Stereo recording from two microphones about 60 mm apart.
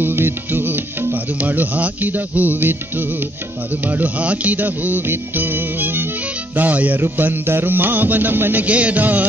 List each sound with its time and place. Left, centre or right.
0.0 s music: right
8.6 s music: right